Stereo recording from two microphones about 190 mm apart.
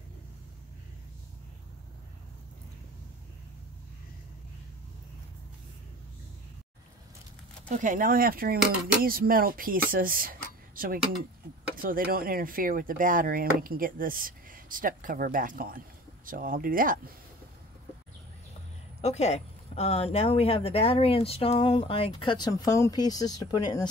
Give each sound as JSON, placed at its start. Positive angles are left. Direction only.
{"t": 7.7, "sound": "speech", "side_deg": -45}
{"t": 18.9, "sound": "speech", "side_deg": 35}